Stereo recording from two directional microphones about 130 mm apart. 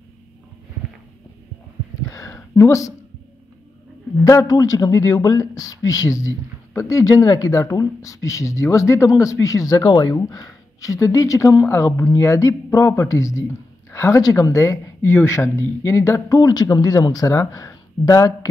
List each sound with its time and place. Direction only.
2.0 s a sound: 25° left (ahead or behind)
2.5 s speech: 25° left (ahead or behind)
4.3 s speech: 25° left (ahead or behind)